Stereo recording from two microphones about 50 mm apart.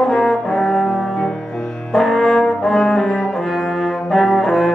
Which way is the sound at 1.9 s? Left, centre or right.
Centre.